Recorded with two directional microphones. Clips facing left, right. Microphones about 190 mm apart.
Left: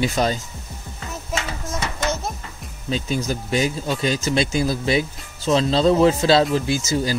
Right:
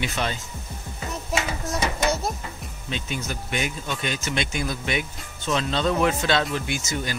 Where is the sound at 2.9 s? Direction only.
35° left (ahead or behind).